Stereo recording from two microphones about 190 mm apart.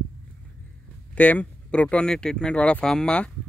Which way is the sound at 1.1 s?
10° left (ahead or behind).